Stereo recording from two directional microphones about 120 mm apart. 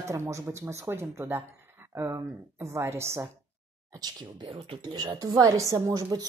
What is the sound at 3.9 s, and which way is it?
Speech, 35° right (ahead or behind).